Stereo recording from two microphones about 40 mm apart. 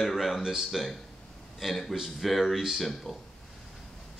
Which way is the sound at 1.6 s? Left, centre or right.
Centre.